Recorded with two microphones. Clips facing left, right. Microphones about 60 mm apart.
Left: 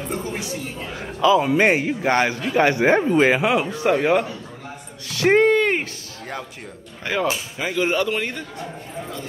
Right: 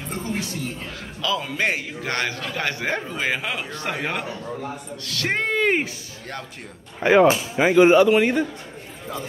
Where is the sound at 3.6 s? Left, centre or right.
Centre.